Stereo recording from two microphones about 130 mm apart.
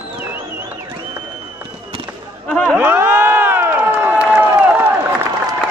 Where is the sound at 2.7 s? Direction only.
15° right (ahead or behind).